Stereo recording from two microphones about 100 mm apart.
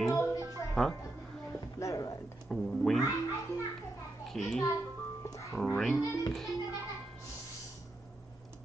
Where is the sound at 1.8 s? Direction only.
30° left (ahead or behind).